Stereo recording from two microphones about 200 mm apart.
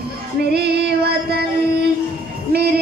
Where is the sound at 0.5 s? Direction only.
55° right (ahead or behind).